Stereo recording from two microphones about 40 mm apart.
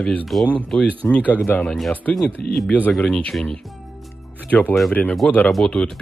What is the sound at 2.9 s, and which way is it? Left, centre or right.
Speech, left.